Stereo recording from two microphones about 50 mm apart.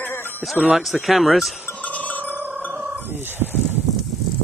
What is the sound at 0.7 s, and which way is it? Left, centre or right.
Speech, centre.